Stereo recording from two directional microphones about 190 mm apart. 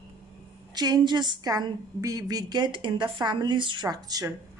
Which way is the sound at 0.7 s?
20° right (ahead or behind).